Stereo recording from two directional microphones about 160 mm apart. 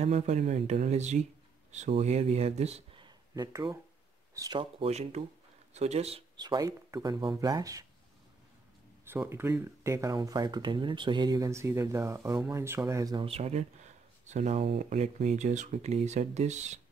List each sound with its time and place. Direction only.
0.0 s speech: 45° right (ahead or behind)
3.3 s speech: 20° right (ahead or behind); by 6.2 s 40° right (ahead or behind)
6.3 s speech: 25° right (ahead or behind)
9.0 s speech: 15° right (ahead or behind)
13.2 s speech: 40° right (ahead or behind)